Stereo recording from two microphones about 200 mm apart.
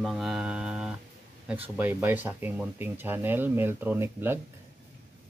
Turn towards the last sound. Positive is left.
turn(degrees=-10)  # may be behind; listen again after turning